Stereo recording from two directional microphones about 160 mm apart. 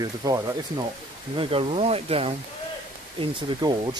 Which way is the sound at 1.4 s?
35° right (ahead or behind).